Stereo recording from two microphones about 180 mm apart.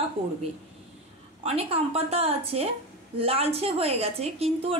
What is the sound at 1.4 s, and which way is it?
A woman's voice, 35° right (ahead or behind).